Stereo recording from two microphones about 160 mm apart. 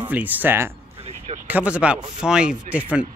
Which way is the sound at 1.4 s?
10° right (ahead or behind).